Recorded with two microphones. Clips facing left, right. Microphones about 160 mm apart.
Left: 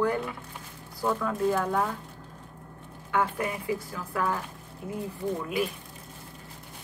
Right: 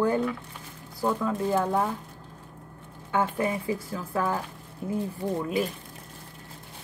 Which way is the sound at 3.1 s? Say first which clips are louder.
Right 2 dB; 25° right (ahead or behind).